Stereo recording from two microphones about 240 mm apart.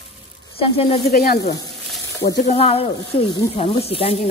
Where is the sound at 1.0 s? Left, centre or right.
Left.